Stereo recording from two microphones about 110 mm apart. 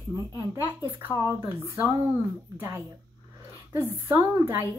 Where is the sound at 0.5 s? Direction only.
20° right (ahead or behind).